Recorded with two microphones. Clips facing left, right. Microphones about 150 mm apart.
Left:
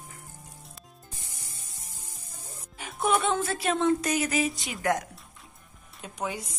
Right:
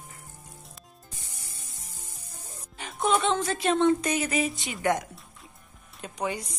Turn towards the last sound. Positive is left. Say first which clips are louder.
# right 2 dB
turn(degrees=0)  # may be behind; listen again after turning